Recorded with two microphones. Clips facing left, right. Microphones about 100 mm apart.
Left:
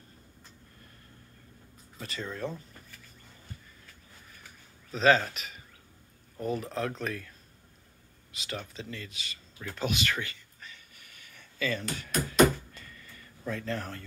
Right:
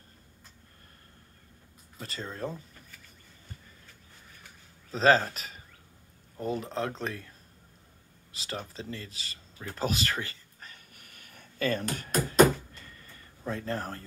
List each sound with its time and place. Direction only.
2.0 s speech: 35° right (ahead or behind)
4.9 s speech: 35° right (ahead or behind)
8.3 s a sound: 30° right (ahead or behind)
13.4 s speech: 30° right (ahead or behind)